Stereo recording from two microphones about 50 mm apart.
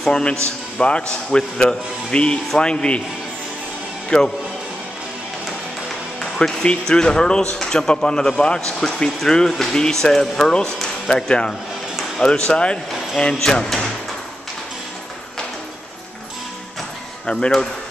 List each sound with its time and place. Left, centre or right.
0.0 s speech: centre
4.1 s speech: centre
6.4 s speech: centre